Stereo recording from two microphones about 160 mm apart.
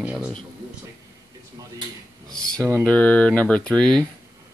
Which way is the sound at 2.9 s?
10° left (ahead or behind).